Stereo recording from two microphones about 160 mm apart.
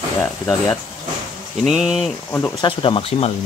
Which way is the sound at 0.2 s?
5° left (ahead or behind).